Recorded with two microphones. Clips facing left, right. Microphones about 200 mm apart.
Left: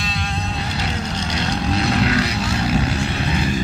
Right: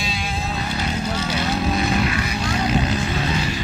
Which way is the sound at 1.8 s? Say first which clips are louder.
Left 3 dB; 70° left (ahead or behind).